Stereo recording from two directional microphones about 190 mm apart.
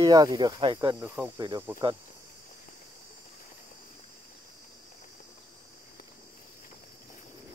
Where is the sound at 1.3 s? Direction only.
25° right (ahead or behind).